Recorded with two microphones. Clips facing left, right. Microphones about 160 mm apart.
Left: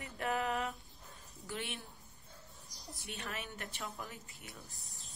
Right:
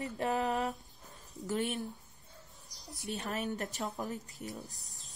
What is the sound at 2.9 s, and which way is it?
Speech, 40° right (ahead or behind).